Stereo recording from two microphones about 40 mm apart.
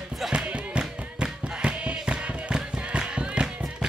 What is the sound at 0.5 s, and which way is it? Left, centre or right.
Music, right.